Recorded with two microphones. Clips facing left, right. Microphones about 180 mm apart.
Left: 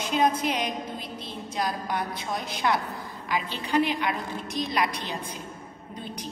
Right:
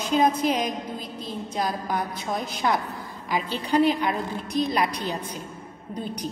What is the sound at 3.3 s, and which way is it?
Speech, 40° right (ahead or behind).